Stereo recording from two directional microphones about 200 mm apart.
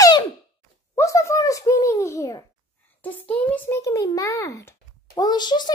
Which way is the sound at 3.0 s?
10° left (ahead or behind).